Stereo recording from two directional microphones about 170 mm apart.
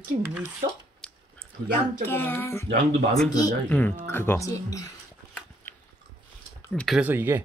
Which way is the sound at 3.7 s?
10° left (ahead or behind).